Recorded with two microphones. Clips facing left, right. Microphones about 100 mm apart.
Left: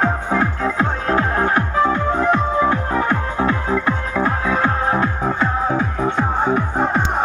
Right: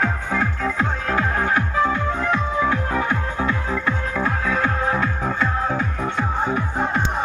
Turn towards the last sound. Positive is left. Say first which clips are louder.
# left 4 dB
turn(degrees=40)  # may be behind; listen again after turning